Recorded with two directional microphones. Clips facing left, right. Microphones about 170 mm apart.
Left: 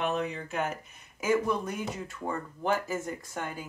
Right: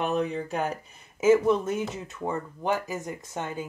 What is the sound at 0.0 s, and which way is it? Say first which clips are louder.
Speech: right 4 dB; 35° right (ahead or behind).